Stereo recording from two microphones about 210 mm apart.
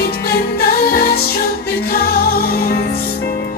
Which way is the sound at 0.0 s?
45° left (ahead or behind).